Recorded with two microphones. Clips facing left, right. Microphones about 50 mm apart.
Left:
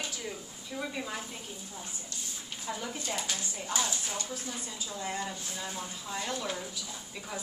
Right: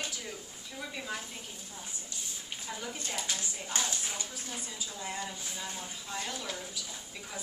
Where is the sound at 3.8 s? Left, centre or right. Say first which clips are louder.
Left 2 dB; right.